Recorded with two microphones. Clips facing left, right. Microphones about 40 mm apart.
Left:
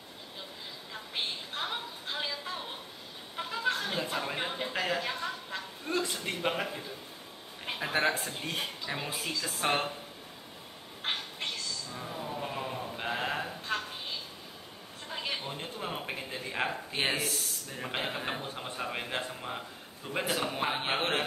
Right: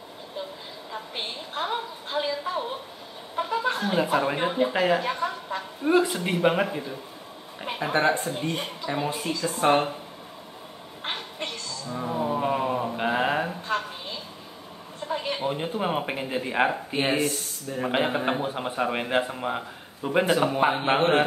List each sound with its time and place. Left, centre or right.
1.1 s a woman's voice: centre
5.9 s a man's voice: right
7.6 s a woman's voice: centre
11.0 s a sound: centre
11.9 s a sound: right
12.9 s mantra: right
15.0 s a sound: centre
15.4 s a man's voice: right
16.9 s a woman's voice: centre
17.9 s a man's voice: right